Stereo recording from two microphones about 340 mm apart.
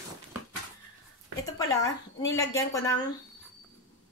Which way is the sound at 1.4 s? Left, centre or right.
Centre.